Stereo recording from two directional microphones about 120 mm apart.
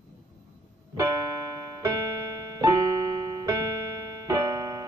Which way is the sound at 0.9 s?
30° right (ahead or behind).